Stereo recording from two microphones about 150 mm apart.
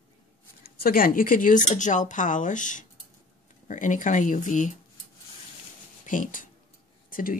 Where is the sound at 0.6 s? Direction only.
85° left; by 4.7 s 55° left (ahead or behind).